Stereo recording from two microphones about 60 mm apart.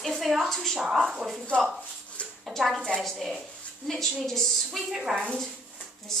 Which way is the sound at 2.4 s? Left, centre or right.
Centre.